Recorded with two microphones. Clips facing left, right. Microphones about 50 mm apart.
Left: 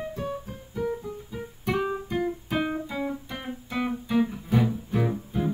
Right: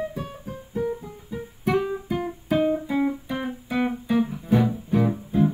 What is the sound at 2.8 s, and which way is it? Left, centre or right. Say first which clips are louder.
Guitar: right 7 dB; centre.